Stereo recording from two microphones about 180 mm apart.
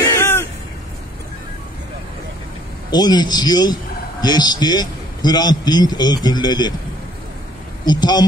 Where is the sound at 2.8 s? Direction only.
25° left (ahead or behind).